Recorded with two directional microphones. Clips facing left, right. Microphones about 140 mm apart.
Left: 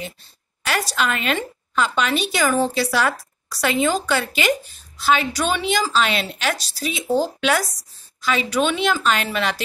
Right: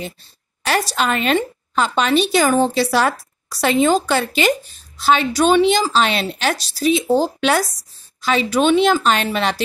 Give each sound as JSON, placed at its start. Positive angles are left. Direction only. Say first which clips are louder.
{"t": 0.7, "sound": "a woman's voice", "louder": "right 4 dB", "side_deg": -30}